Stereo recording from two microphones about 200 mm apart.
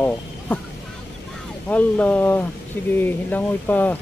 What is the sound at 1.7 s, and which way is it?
Speech, 5° left (ahead or behind).